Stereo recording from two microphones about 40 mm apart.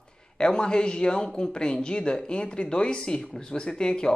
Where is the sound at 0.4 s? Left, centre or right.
Left.